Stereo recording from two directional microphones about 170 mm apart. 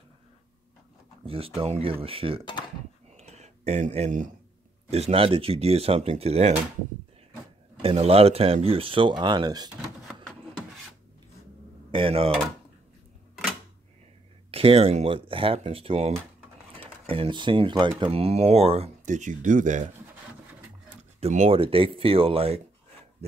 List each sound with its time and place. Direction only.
1.2 s speech: 35° right (ahead or behind)
3.1 s a sound: 40° right (ahead or behind)
4.9 s speech: 35° right (ahead or behind)
7.8 s speech: 35° right (ahead or behind)
11.9 s speech: 35° right (ahead or behind)
14.5 s speech: 35° right (ahead or behind)
21.2 s speech: 40° right (ahead or behind)